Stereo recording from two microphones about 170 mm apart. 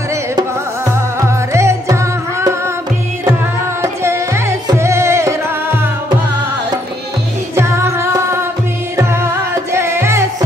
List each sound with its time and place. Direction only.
1.5 s music: 15° right (ahead or behind)
3.8 s music: 15° right (ahead or behind)
7.5 s music: 15° right (ahead or behind)